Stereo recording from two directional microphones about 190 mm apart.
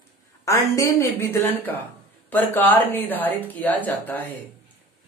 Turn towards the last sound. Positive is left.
turn(degrees=10)  # may be behind; listen again after turning